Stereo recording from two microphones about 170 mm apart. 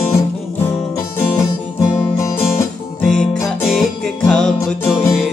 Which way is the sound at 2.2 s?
20° left (ahead or behind).